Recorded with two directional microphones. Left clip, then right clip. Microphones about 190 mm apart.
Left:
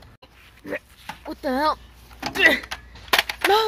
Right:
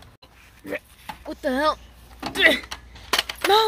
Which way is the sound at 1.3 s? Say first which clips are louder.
Even; 20° left (ahead or behind).